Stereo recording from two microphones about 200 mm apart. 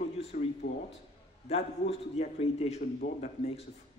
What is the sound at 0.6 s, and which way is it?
Speech, 55° left (ahead or behind).